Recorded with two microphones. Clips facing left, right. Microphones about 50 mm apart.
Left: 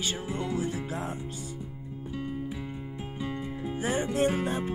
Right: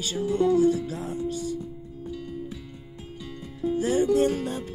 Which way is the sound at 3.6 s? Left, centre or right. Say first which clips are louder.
Right 8 dB; left.